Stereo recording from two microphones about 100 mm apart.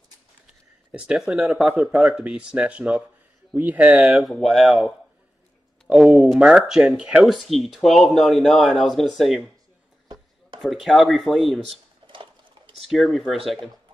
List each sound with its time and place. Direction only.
0.9 s speech: 10° right (ahead or behind)
3.9 s speech: 5° right (ahead or behind)
5.9 s speech: centre (ahead or behind)
10.6 s speech: centre (ahead or behind)
12.0 s sewing machine: 50° right (ahead or behind)
12.8 s speech: centre (ahead or behind)